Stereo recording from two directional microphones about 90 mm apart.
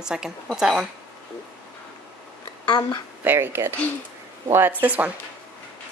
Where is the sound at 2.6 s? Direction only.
55° left (ahead or behind).